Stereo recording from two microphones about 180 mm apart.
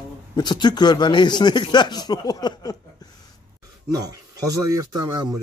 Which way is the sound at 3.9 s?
20° right (ahead or behind).